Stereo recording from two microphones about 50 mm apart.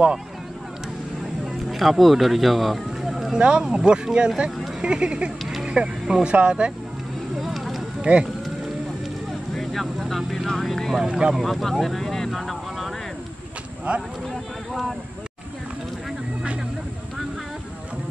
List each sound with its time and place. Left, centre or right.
1.4 s music: centre
3.3 s speech: centre
5.4 s a sound: centre
5.7 s speech: centre
7.3 s vehicle: centre
8.0 s speech: centre
9.5 s speech: centre
11.1 s speech: right
11.3 s vehicle: centre
14.2 s speech: centre